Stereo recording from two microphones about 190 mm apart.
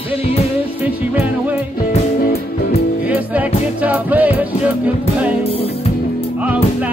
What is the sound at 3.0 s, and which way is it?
Music, 10° right (ahead or behind).